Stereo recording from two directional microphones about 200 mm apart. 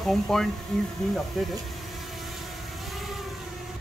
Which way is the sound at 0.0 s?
Centre (ahead or behind).